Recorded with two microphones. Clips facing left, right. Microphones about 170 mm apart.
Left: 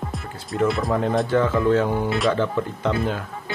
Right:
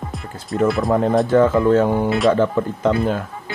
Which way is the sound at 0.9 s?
40° right (ahead or behind).